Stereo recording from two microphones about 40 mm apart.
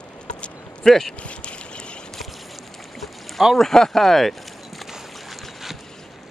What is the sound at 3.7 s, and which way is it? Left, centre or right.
Speech, centre.